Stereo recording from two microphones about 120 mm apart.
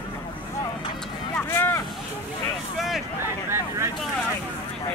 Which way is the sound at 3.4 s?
20° right (ahead or behind).